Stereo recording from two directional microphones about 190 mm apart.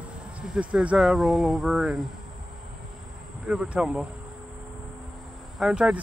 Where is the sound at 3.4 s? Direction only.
5° right (ahead or behind).